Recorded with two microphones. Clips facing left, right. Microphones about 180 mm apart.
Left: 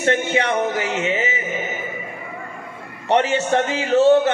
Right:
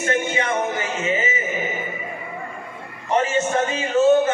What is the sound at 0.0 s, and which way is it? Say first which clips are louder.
Music: left 3 dB; 75° left (ahead or behind).